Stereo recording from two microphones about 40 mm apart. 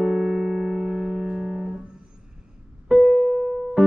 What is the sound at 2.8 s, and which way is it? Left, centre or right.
Music, centre.